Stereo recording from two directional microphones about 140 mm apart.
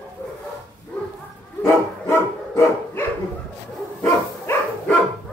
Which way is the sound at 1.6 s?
20° left (ahead or behind).